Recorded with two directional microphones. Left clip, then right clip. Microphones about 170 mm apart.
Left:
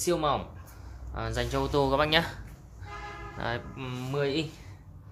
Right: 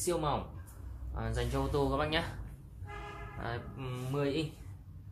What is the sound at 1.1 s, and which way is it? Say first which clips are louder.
Speech: left 6 dB; 75° left (ahead or behind).